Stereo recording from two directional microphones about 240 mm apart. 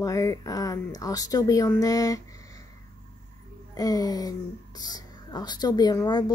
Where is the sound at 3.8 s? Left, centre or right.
Centre.